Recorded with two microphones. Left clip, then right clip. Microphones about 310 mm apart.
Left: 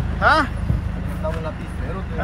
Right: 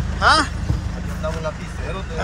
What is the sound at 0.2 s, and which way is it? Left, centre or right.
Speech, centre.